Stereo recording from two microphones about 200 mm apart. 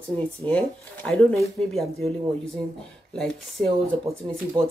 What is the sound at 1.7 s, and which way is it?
Speech, centre (ahead or behind).